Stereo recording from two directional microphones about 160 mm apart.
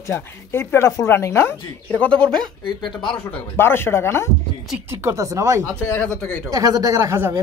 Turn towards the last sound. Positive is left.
turn(degrees=-15)  # may be behind; listen again after turning